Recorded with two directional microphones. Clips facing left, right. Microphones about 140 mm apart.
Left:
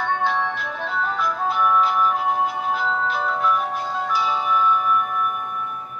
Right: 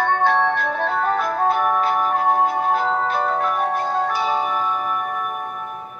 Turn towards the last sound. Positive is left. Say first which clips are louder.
# left 2 dB
turn(degrees=-45)  # may be behind; listen again after turning